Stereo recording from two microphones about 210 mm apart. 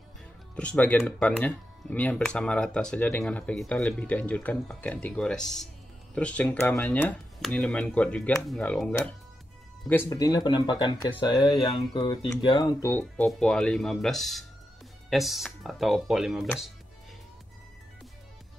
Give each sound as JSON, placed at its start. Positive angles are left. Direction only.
{"t": 0.6, "sound": "speech", "side_deg": 5}
{"t": 13.2, "sound": "speech", "side_deg": 5}